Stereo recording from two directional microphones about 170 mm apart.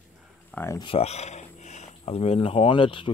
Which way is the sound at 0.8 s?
35° left (ahead or behind).